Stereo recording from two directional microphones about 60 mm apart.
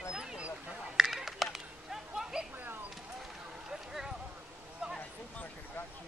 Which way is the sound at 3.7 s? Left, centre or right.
Centre.